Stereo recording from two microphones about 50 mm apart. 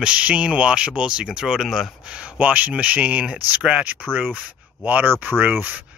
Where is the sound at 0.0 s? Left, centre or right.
Right.